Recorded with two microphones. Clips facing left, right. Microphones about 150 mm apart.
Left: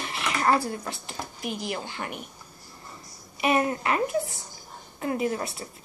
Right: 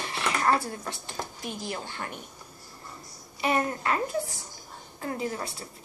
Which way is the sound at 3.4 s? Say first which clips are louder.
Left 3 dB; 15° left (ahead or behind).